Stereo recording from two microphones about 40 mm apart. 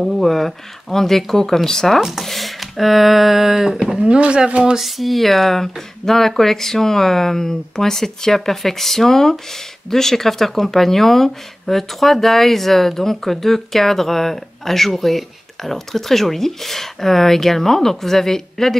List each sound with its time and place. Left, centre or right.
0.0 s speech: centre
2.0 s speech: centre
2.2 s a sound: centre
4.5 s speech: right
4.7 s speech: centre